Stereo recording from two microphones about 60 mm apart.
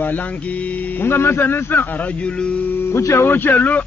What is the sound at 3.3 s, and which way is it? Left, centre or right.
Speech, left.